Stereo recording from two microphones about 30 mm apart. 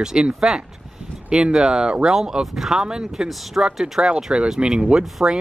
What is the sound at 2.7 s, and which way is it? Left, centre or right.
Speech, centre.